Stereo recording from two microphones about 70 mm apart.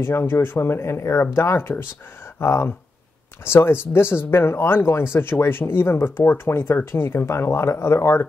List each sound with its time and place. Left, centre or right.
0.0 s speech: left